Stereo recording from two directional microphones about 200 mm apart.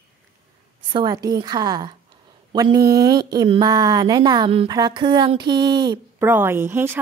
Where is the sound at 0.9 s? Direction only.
20° right (ahead or behind).